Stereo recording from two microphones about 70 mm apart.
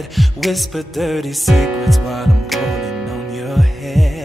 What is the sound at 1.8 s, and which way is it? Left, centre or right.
Music, centre.